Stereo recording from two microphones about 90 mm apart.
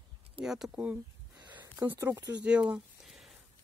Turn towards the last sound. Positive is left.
turn(degrees=0)  # may be behind; listen again after turning